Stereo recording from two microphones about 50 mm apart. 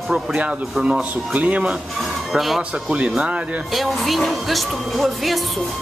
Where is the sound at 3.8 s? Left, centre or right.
Centre.